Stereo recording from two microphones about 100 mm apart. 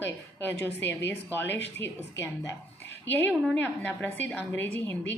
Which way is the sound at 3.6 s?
20° left (ahead or behind).